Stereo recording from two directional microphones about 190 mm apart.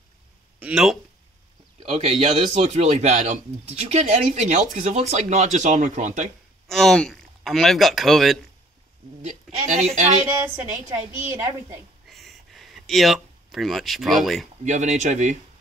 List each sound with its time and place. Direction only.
0.6 s speech: 5° right (ahead or behind)
1.9 s speech: 30° right (ahead or behind)
6.7 s speech: centre (ahead or behind)
9.2 s speech: 35° right (ahead or behind)
10.3 s a woman's voice: 10° right (ahead or behind)
12.1 s a sound: centre (ahead or behind)
14.6 s speech: 40° right (ahead or behind)